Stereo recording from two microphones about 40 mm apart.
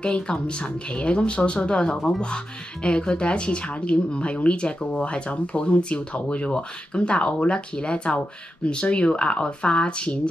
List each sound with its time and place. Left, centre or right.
0.0 s speech: left